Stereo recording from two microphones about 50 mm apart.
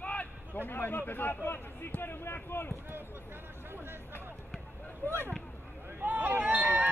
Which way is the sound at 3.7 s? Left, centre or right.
Right.